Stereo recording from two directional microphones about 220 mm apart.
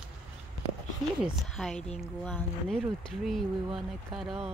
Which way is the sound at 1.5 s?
5° left (ahead or behind).